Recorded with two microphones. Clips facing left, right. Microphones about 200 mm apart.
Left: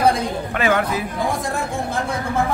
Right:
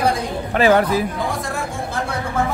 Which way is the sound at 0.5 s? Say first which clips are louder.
Right 6 dB; 35° right (ahead or behind).